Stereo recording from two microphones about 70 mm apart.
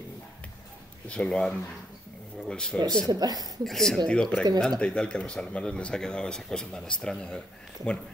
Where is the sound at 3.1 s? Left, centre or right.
Right.